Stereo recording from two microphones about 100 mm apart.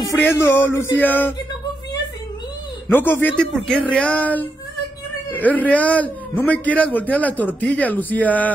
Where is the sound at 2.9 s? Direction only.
20° left (ahead or behind).